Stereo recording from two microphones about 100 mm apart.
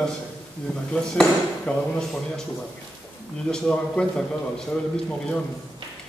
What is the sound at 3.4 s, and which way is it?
A man's voice, 10° left (ahead or behind).